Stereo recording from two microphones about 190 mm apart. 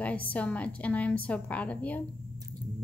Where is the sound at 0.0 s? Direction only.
10° left (ahead or behind).